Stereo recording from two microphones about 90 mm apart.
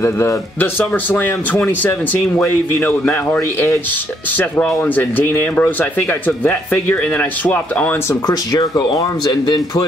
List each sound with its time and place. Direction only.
0.0 s speech: 30° left (ahead or behind)
4.4 s speech: 15° left (ahead or behind)
8.3 s speech: 45° left (ahead or behind)